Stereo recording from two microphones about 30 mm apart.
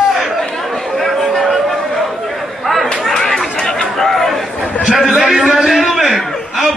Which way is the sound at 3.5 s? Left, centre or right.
Centre.